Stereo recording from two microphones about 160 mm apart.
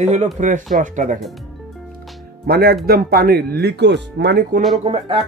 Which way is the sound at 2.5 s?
75° right (ahead or behind).